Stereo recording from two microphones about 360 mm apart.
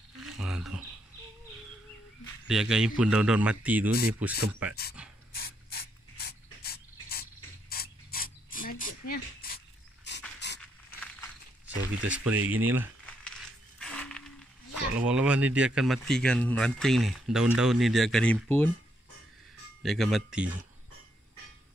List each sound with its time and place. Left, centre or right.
0.2 s cricket: centre
2.4 s a man's voice: centre
5.0 s pant: centre
5.3 s mechanisms: left
7.7 s a sound: left
9.1 s dog: left
10.1 s pant: left
12.1 s crumpling: centre
14.7 s speech: centre
19.8 s speech: centre